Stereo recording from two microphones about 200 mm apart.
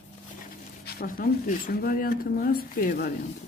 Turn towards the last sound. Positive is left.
turn(degrees=45)  # may be behind; listen again after turning